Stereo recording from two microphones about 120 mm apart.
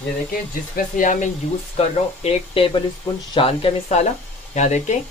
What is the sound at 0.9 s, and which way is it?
Speech, 90° left.